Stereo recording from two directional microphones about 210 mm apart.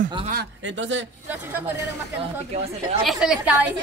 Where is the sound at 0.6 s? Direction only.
60° right (ahead or behind).